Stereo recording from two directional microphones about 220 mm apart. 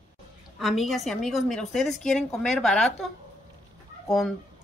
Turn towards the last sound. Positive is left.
turn(degrees=0)  # may be behind; listen again after turning